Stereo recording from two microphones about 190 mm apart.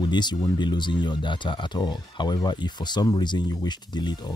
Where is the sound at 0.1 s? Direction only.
20° left (ahead or behind).